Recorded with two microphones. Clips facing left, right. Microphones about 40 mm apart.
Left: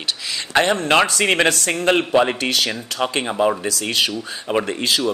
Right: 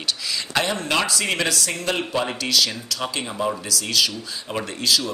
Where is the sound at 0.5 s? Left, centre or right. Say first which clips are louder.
Left 7 dB; left.